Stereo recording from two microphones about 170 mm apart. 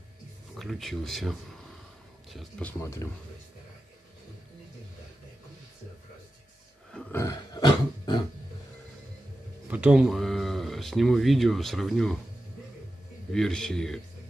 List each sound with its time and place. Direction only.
0.6 s speech: centre (ahead or behind)
2.8 s speech: 15° left (ahead or behind)
6.9 s burping: 5° left (ahead or behind)
7.2 s a sound: 20° left (ahead or behind)
9.7 s speech: 5° right (ahead or behind)
13.3 s speech: 5° left (ahead or behind)